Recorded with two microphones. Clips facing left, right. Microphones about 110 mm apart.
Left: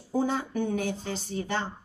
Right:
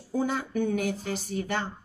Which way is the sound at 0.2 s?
30° left (ahead or behind).